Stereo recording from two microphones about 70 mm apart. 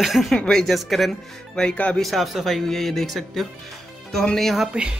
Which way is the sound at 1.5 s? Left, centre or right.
Centre.